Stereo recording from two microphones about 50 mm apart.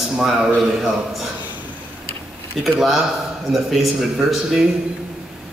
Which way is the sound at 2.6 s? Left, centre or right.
Centre.